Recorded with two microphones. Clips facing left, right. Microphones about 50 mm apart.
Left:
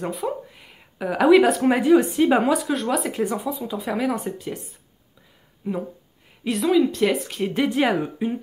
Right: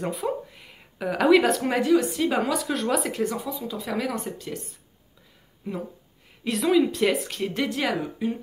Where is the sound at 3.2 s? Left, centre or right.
Centre.